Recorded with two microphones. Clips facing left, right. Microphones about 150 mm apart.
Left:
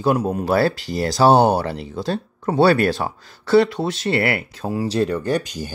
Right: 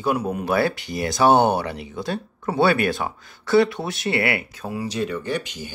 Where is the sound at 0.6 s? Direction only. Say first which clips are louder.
Left 3 dB; 20° right (ahead or behind).